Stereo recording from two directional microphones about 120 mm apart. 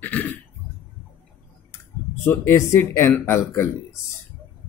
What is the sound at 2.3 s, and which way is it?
Speech, 20° left (ahead or behind).